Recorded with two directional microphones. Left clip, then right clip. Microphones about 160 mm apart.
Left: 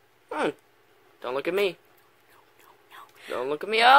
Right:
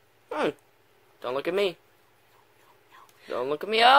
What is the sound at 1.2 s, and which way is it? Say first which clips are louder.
Speech: left 1 dB; centre (ahead or behind).